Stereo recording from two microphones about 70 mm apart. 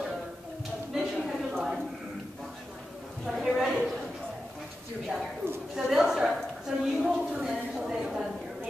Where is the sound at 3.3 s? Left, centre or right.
Centre.